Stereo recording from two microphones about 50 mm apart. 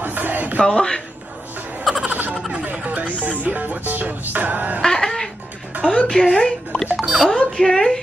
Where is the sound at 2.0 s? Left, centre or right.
Right.